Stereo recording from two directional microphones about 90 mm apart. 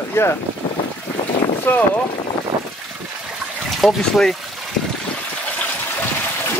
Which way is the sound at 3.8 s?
5° left (ahead or behind).